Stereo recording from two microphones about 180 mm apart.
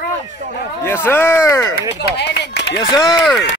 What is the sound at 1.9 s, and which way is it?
Speech, 70° left (ahead or behind).